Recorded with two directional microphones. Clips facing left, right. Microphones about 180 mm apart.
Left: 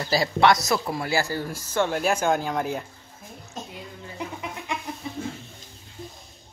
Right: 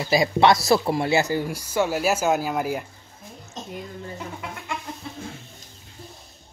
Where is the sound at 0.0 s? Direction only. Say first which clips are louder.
Right 2 dB; 15° right (ahead or behind).